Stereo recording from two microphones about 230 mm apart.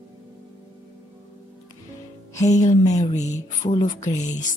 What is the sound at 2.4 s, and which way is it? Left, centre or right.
Speech, left.